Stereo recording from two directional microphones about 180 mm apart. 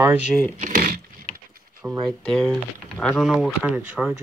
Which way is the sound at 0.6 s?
50° right (ahead or behind).